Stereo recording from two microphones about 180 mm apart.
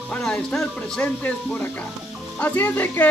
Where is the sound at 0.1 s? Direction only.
5° left (ahead or behind).